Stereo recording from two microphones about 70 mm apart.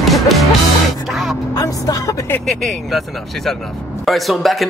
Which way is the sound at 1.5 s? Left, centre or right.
Left.